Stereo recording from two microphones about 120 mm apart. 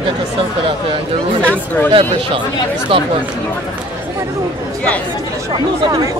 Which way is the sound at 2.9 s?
50° right (ahead or behind).